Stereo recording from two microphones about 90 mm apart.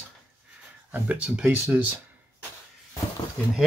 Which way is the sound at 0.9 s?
15° right (ahead or behind).